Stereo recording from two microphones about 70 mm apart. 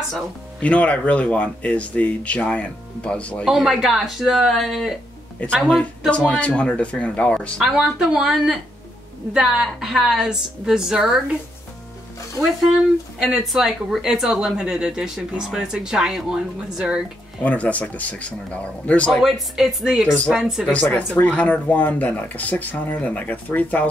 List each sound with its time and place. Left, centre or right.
0.6 s speech: centre
3.4 s speech: centre
5.4 s speech: centre
7.7 s speech: centre
13.2 s speech: centre
17.4 s speech: left
19.2 s speech: centre
20.7 s speech: centre